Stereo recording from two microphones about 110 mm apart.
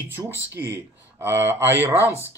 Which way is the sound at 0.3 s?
20° right (ahead or behind).